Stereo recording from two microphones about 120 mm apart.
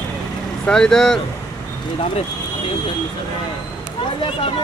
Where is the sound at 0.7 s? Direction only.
5° left (ahead or behind).